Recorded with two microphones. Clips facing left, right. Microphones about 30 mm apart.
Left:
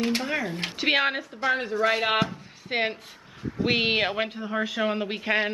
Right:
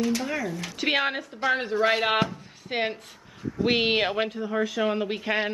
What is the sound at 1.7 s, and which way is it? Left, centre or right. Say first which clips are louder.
Speech: right 2 dB; centre.